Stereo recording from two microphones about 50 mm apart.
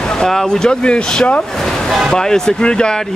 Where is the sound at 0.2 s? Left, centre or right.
Centre; by 1.4 s left.